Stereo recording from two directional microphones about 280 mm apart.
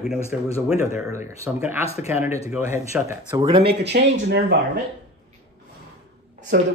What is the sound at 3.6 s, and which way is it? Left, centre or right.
Speech, right.